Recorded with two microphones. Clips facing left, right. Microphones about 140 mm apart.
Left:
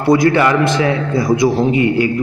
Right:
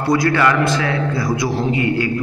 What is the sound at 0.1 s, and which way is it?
A man's voice, 20° left (ahead or behind).